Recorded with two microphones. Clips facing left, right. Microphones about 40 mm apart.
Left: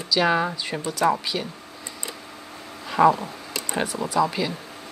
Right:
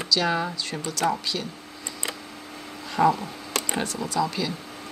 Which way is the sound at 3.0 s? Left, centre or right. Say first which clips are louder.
Left 3 dB; left.